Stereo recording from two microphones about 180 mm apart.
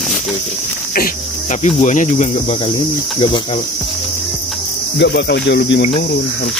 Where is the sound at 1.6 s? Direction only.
40° left (ahead or behind).